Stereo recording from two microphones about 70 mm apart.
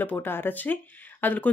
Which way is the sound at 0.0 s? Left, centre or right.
Left.